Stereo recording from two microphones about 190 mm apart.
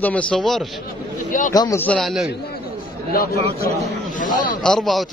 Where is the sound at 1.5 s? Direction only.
15° left (ahead or behind); by 2.3 s centre (ahead or behind).